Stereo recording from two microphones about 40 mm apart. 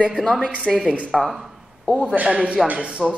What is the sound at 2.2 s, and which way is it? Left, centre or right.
Speech, right.